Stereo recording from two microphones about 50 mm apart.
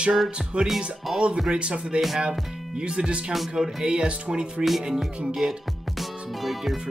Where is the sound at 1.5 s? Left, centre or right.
Centre.